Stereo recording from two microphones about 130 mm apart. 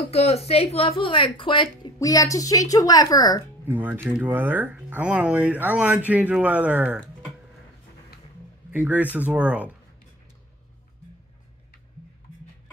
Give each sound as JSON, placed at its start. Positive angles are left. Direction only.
{"t": 0.1, "sound": "speech", "side_deg": 55}
{"t": 3.6, "sound": "speech", "side_deg": -15}
{"t": 8.7, "sound": "speech", "side_deg": -10}